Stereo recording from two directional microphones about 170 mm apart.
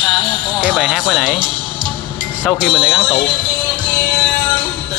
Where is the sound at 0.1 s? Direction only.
5° right (ahead or behind).